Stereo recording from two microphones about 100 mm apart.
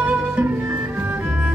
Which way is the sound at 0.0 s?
15° right (ahead or behind).